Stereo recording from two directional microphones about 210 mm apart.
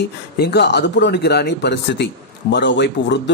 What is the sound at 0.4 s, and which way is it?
Speech, 55° left (ahead or behind).